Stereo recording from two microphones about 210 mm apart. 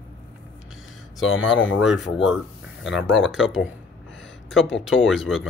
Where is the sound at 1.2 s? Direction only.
65° left (ahead or behind).